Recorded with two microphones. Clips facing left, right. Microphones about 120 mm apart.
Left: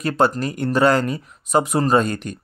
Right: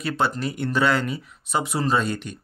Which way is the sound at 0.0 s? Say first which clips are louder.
Left 5 dB; 45° left (ahead or behind).